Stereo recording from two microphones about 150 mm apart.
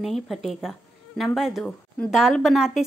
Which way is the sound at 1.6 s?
10° left (ahead or behind).